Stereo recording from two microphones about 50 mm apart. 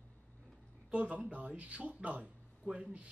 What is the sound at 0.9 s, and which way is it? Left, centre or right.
Speech, right.